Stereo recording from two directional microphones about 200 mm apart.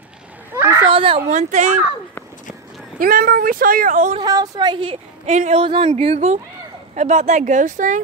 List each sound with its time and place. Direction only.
0.5 s a sound: 15° right (ahead or behind)
0.9 s speech: 25° right (ahead or behind)
3.0 s speech: 45° right (ahead or behind)
4.2 s a woman's voice: 20° right (ahead or behind); by 8.0 s 40° right (ahead or behind)